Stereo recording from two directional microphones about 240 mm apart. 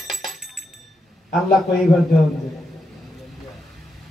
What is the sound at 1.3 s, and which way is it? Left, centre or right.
Speech, centre.